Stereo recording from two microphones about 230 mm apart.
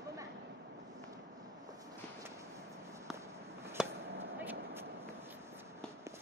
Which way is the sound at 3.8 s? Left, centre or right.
Centre.